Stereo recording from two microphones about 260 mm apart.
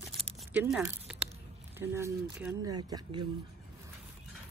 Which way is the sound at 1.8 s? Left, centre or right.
Centre.